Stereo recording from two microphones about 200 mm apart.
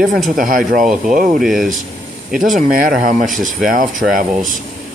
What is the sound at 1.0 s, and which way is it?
Speech, 40° right (ahead or behind).